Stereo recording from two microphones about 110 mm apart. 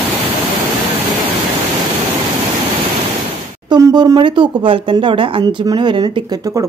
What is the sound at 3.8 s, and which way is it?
Speech, 35° right (ahead or behind).